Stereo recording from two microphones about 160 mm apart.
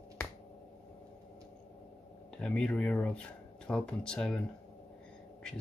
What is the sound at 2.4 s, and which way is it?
Speech, 5° left (ahead or behind).